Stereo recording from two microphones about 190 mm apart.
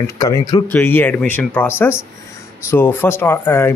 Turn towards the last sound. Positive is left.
turn(degrees=10)  # may be behind; listen again after turning